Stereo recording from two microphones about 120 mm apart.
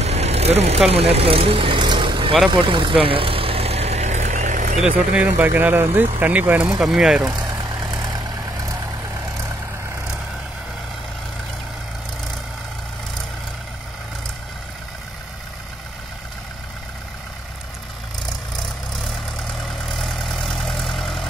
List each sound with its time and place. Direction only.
0.0 s vehicle: 65° right (ahead or behind); by 4.8 s 90° right
4.8 s speech: 10° right (ahead or behind)
7.3 s vehicle: 30° right (ahead or behind)
19.6 s vehicle: centre (ahead or behind)